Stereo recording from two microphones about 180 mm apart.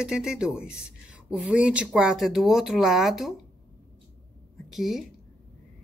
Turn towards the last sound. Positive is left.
turn(degrees=0)  # may be behind; listen again after turning